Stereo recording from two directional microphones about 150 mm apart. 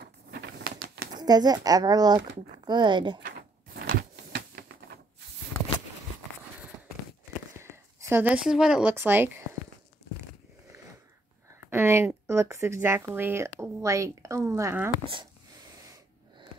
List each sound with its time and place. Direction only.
0.7 s a sound: 90° right
1.2 s speech: 25° right (ahead or behind)
3.8 s printer: 80° right
7.5 s a sound: 15° right (ahead or behind)
8.9 s speech: 15° right (ahead or behind)
11.7 s speech: 15° right (ahead or behind)